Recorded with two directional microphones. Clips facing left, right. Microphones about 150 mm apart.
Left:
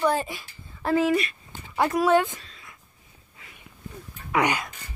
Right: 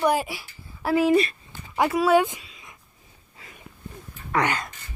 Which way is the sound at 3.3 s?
35° right (ahead or behind).